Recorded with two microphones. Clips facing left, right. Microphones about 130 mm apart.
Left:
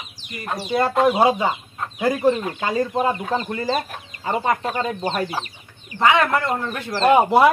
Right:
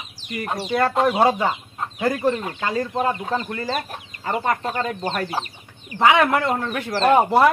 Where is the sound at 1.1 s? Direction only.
15° left (ahead or behind).